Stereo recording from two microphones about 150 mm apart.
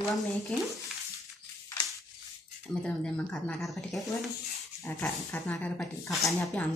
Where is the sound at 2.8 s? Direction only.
5° left (ahead or behind).